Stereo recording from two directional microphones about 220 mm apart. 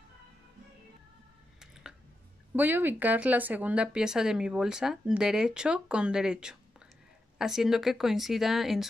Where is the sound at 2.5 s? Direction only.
10° right (ahead or behind).